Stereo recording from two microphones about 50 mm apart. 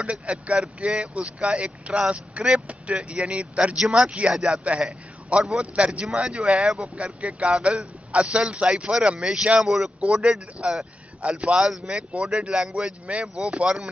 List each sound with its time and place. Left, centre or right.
0.0 s speech: right
4.6 s a man's voice: right
9.9 s speech: right
11.6 s speech: centre